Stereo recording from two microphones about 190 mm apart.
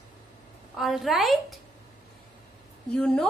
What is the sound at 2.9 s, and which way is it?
Speech, 5° left (ahead or behind).